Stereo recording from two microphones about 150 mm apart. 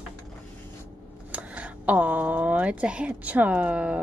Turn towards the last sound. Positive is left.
turn(degrees=-10)  # may be behind; listen again after turning